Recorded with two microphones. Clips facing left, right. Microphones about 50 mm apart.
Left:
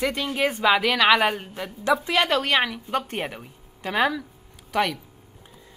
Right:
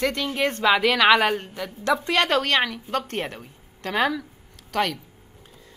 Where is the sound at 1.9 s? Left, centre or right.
Centre.